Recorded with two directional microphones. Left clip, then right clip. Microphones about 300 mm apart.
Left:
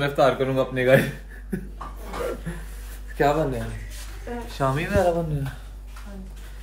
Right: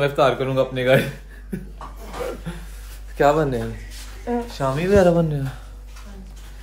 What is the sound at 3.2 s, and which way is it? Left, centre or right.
Speech, centre.